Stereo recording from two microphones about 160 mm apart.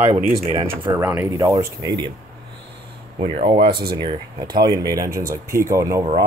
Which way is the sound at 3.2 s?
35° right (ahead or behind).